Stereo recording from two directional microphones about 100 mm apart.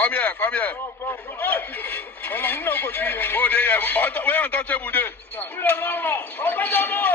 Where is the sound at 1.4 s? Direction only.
20° left (ahead or behind).